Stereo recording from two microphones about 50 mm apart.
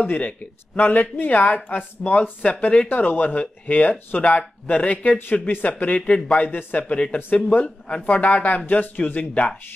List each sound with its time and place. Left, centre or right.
0.0 s a man's voice: left
5.9 s speech: left
6.4 s a man's voice: left